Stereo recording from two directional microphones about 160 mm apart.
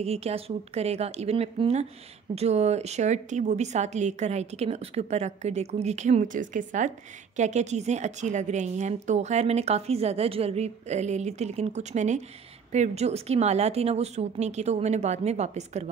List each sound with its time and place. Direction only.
0.0 s a woman's voice: 40° right (ahead or behind)